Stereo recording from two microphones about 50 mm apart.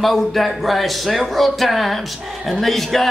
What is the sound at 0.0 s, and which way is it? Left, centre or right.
A man's voice, centre.